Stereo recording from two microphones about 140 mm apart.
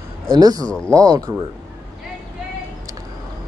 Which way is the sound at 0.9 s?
25° right (ahead or behind).